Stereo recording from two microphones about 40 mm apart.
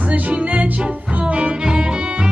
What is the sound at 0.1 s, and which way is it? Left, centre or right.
Music, right.